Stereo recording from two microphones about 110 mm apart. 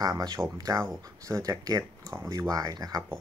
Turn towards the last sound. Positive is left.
turn(degrees=-35)  # may be behind; listen again after turning